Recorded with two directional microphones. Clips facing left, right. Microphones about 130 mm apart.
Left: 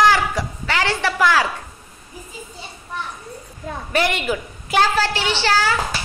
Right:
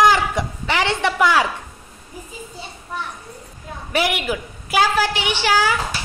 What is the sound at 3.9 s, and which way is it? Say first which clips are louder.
A woman's voice: even; 10° right (ahead or behind).